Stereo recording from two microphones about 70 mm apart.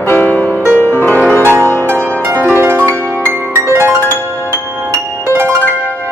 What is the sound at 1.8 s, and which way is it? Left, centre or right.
Music, right.